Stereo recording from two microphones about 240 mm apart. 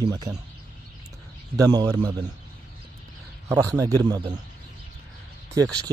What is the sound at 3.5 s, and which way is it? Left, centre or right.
Speech, centre.